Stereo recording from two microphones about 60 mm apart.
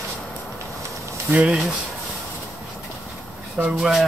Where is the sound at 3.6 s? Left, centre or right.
Right.